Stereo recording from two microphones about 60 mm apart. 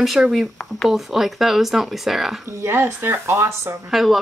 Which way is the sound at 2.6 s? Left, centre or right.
Right.